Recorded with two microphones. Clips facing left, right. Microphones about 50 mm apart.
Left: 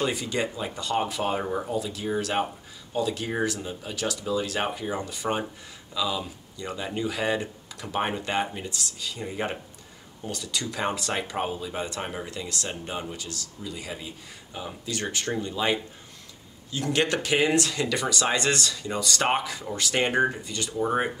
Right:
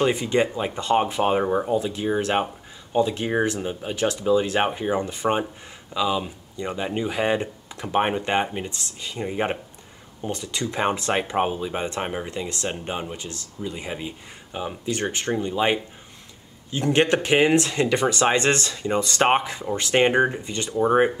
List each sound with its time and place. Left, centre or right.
0.0 s speech: right